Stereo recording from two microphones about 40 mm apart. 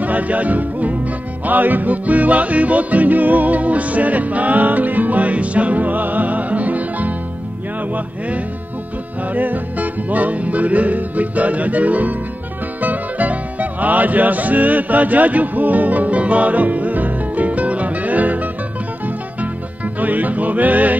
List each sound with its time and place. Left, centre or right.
0.0 s music: right
9.3 s music: right